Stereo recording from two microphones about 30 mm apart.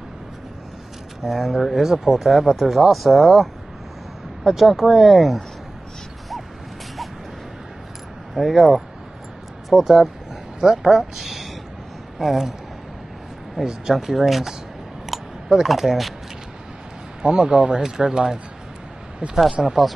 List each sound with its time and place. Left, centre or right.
1.2 s speech: centre
4.5 s speech: centre
8.4 s speech: centre
13.6 s speech: centre
15.4 s a sound: right
15.7 s speech: centre
17.2 s speech: right
17.8 s speech: right
19.6 s speech: centre